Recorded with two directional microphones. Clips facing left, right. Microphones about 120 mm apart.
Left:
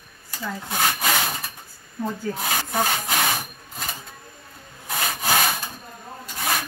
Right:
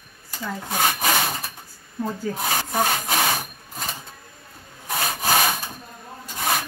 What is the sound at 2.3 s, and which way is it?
Rub, 15° right (ahead or behind).